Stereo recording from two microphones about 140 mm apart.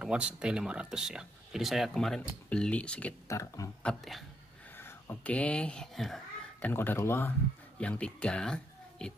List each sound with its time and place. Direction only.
0.0 s speech: 5° right (ahead or behind); by 3.2 s 10° left (ahead or behind)
3.3 s speech: 20° left (ahead or behind)
3.8 s speech: centre (ahead or behind)
4.7 s speech: 15° left (ahead or behind)
6.7 s speech: 15° left (ahead or behind)